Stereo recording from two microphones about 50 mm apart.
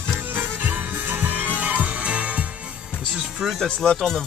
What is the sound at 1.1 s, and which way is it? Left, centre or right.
Music, right.